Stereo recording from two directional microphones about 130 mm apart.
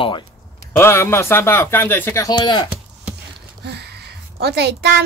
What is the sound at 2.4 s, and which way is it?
Speech, 30° left (ahead or behind).